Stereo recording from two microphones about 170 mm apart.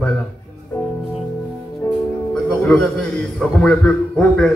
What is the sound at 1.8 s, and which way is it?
Music, 10° left (ahead or behind).